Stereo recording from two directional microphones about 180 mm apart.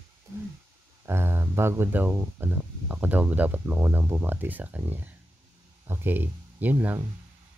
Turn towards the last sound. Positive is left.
turn(degrees=-10)  # may be behind; listen again after turning